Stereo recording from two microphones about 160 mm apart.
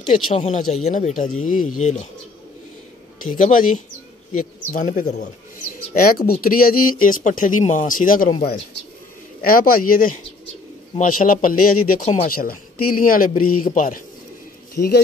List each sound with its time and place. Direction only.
0.3 s speech: 45° left (ahead or behind)
3.3 s speech: 50° left (ahead or behind)
5.9 s speech: 65° left (ahead or behind)
9.4 s speech: 65° left (ahead or behind)